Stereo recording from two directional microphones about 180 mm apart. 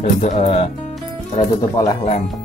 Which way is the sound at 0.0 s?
40° left (ahead or behind).